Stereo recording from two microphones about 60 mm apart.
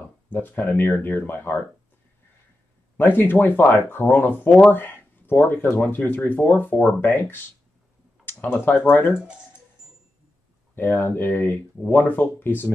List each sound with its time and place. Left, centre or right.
0.3 s speech: left
3.0 s speech: left
9.1 s speech: centre
10.7 s speech: left